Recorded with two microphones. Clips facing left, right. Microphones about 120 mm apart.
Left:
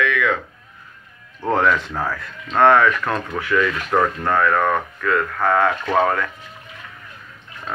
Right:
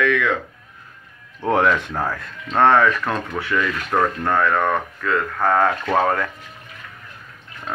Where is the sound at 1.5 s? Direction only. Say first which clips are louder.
Even; 20° right (ahead or behind).